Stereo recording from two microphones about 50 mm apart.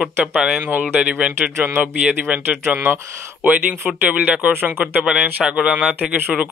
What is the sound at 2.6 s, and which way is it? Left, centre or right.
Speech, right.